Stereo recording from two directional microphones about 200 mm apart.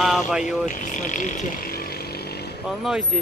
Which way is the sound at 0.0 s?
Centre (ahead or behind).